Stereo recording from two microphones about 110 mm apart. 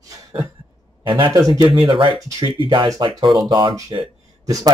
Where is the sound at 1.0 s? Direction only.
50° right (ahead or behind).